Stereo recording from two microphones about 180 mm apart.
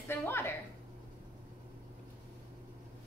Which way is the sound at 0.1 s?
15° left (ahead or behind).